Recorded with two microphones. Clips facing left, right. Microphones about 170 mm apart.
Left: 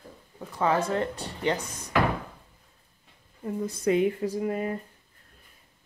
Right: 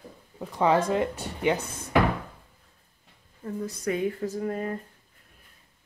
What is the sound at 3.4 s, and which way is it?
Speech, 20° left (ahead or behind).